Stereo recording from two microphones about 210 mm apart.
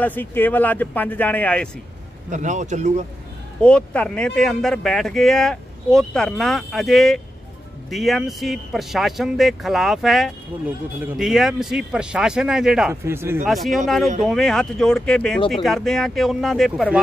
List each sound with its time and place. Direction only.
0.0 s speech: 10° left (ahead or behind)
2.3 s speech: 35° right (ahead or behind)
3.6 s speech: 5° left (ahead or behind); by 13.5 s 10° right (ahead or behind)
13.5 s speech: centre (ahead or behind)